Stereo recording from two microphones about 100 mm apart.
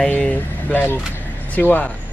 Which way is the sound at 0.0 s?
15° left (ahead or behind).